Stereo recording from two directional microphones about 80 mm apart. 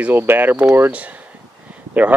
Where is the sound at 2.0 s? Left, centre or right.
Right.